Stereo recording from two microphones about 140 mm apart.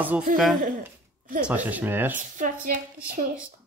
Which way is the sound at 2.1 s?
70° right (ahead or behind).